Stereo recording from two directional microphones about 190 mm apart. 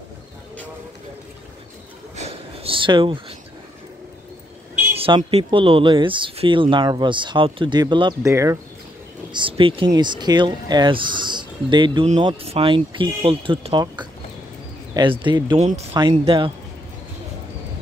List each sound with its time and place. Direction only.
2.1 s a sound: 30° right (ahead or behind)
4.9 s speech: 30° right (ahead or behind)
9.3 s speech: 25° right (ahead or behind)